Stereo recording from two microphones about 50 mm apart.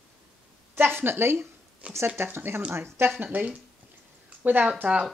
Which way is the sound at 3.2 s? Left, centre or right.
Right.